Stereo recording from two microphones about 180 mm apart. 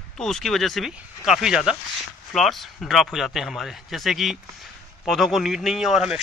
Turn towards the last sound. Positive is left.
turn(degrees=-5)  # may be behind; listen again after turning